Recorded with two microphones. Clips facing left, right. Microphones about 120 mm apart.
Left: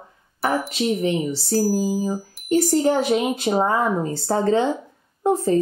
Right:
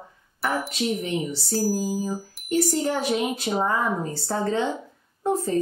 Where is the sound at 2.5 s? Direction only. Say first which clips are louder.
Left 5 dB; 45° left (ahead or behind).